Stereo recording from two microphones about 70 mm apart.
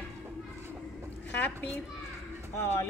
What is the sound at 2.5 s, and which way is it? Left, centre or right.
Speech, left.